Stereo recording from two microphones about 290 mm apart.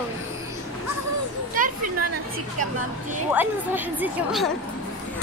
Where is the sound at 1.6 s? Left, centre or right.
Right.